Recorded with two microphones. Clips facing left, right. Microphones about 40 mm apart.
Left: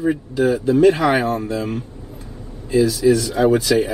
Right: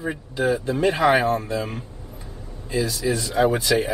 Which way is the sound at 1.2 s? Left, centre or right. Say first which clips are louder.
Left 1 dB; right.